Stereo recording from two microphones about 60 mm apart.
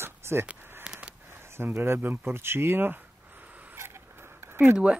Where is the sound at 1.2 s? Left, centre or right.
Right.